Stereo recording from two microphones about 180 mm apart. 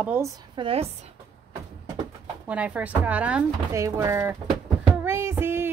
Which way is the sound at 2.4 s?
5° right (ahead or behind).